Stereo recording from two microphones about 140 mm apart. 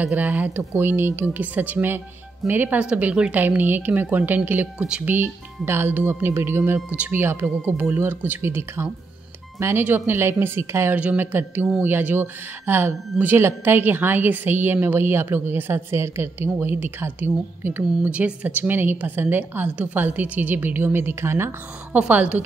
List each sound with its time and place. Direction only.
0.0 s speech: 10° right (ahead or behind)